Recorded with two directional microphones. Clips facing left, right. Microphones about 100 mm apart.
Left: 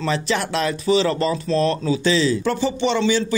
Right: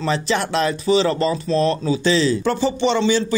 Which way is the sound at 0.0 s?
25° right (ahead or behind).